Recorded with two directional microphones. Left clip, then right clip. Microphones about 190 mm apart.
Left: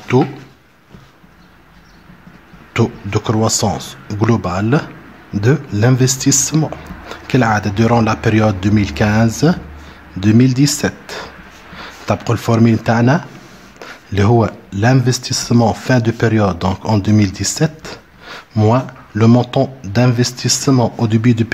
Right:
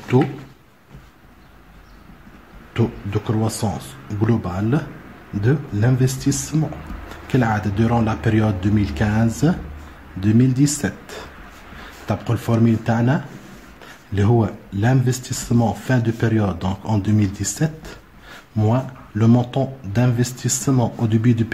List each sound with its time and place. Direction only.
0.1 s speech: 35° left (ahead or behind)
2.7 s speech: 40° left (ahead or behind)